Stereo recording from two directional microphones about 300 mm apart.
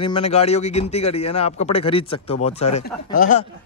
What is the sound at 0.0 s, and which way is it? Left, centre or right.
A man's voice, centre.